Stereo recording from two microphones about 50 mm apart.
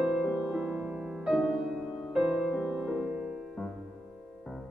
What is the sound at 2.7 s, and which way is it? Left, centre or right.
Music, centre.